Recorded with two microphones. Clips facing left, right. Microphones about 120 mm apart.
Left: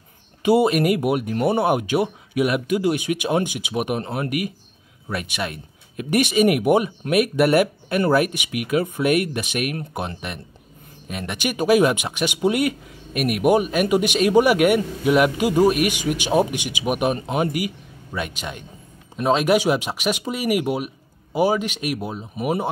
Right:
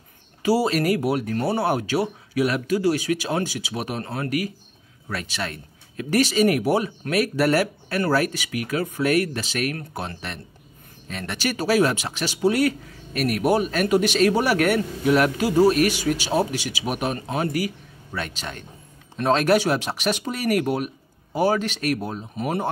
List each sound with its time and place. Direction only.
0.4 s speech: 20° left (ahead or behind)